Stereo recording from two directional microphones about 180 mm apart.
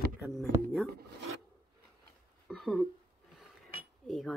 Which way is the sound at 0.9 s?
60° right (ahead or behind).